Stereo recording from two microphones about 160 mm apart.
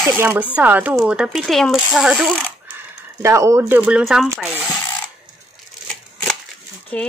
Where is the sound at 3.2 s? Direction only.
20° right (ahead or behind).